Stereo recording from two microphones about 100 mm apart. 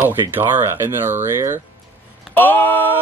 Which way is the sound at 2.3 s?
15° left (ahead or behind).